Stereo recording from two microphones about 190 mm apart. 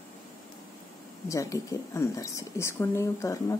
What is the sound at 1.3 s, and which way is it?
A woman's voice, 15° left (ahead or behind).